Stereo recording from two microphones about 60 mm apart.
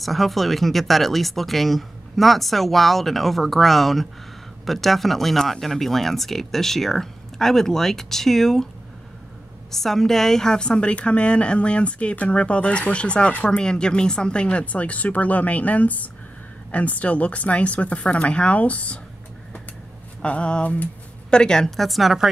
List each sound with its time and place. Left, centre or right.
0.0 s speech: centre
9.7 s a woman's voice: centre; by 18.9 s left
20.2 s speech: centre